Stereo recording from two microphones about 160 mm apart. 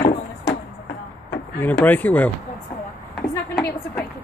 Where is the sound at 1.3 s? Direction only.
10° left (ahead or behind).